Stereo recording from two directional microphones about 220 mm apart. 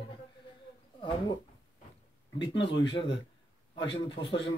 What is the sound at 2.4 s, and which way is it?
Speech, 55° left (ahead or behind).